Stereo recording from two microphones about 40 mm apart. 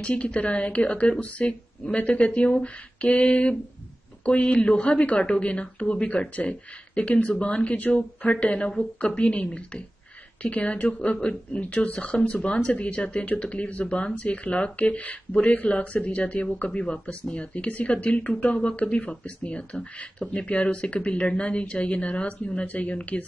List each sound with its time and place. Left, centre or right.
0.0 s speech: left
1.4 s speech: centre; by 12.1 s left
12.1 s speech: left
22.7 s speech: left